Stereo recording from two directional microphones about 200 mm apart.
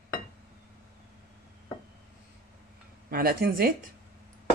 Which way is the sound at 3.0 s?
50° right (ahead or behind).